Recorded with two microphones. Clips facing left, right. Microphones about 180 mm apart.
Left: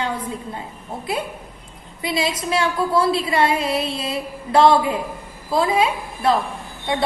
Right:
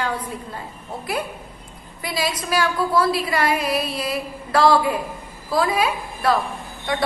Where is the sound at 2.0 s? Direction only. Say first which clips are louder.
Left 3 dB; 25° left (ahead or behind).